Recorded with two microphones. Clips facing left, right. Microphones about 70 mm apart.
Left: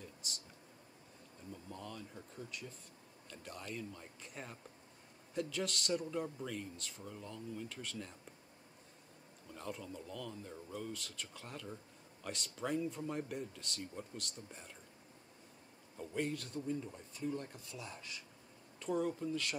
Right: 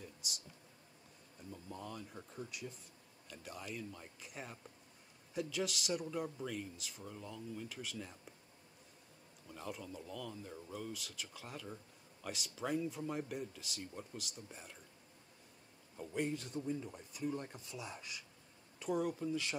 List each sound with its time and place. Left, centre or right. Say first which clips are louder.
1.5 s speech: right 1 dB; centre
9.5 s speech: left 1 dB; centre
16.1 s speech: even; centre